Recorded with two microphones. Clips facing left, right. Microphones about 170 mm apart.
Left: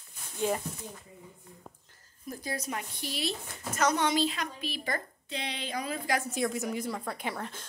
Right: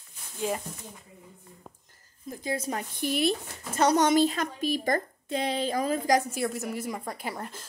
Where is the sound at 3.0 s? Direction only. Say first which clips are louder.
Right 11 dB; 55° right (ahead or behind).